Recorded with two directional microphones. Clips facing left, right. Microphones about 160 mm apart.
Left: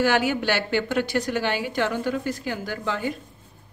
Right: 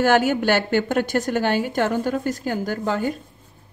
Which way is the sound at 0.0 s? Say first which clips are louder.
Right 4 dB; 45° right (ahead or behind).